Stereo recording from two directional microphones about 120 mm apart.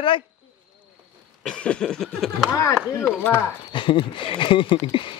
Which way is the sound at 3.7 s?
45° left (ahead or behind).